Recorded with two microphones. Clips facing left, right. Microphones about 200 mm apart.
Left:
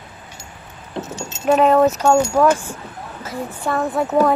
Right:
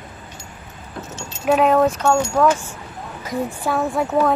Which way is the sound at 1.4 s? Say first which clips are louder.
Left 2 dB; centre (ahead or behind).